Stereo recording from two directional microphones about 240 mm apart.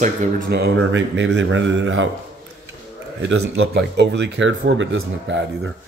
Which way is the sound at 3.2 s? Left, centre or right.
Right.